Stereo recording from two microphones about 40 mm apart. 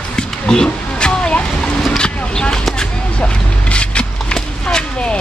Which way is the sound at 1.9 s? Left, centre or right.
Left.